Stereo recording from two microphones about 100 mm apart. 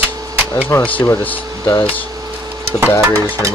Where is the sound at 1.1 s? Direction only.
20° left (ahead or behind).